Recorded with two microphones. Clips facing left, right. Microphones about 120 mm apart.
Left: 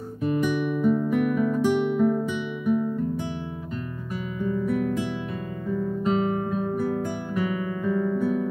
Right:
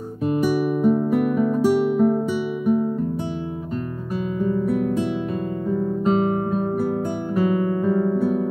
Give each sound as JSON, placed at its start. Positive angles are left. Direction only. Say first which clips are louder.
{"t": 0.2, "sound": "guitar", "louder": "right 4 dB", "side_deg": -40}
{"t": 2.0, "sound": "music", "louder": "right 4 dB", "side_deg": -35}
{"t": 4.4, "sound": "guitar", "louder": "right 3 dB", "side_deg": -35}